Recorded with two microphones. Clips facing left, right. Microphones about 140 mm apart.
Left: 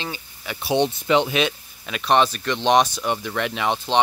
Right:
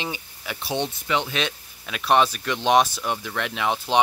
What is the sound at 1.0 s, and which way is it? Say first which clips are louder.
Speech: left 6 dB; 25° left (ahead or behind).